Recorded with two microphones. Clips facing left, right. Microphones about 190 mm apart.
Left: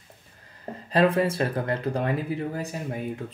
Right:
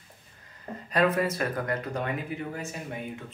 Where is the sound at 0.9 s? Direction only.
30° left (ahead or behind).